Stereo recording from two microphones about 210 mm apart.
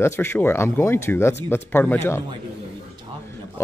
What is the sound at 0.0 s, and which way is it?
Speech, 10° left (ahead or behind).